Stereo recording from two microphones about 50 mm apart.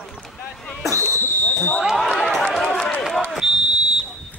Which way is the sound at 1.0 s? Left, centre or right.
Left.